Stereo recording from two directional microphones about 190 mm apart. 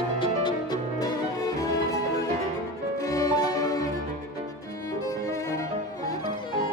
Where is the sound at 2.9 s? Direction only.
20° left (ahead or behind).